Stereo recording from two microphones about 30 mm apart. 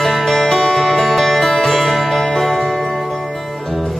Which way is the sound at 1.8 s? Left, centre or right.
Centre.